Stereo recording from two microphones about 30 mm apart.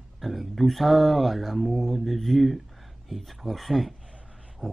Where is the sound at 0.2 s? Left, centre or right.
Centre.